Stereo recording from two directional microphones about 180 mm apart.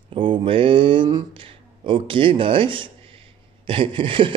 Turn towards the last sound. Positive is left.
turn(degrees=-30)  # may be behind; listen again after turning